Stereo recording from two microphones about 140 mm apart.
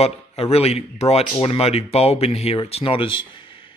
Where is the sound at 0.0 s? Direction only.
45° left (ahead or behind).